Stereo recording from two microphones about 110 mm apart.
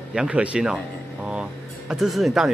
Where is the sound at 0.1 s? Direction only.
10° right (ahead or behind).